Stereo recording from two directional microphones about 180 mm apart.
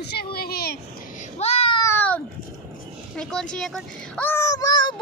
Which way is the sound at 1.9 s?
10° left (ahead or behind).